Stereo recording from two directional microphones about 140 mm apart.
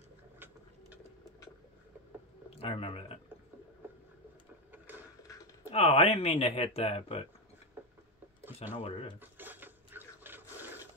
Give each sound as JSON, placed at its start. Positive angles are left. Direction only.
{"t": 2.5, "sound": "speech", "side_deg": 45}
{"t": 5.7, "sound": "speech", "side_deg": 45}
{"t": 8.7, "sound": "speech", "side_deg": 45}
{"t": 9.2, "sound": "a sound", "side_deg": -15}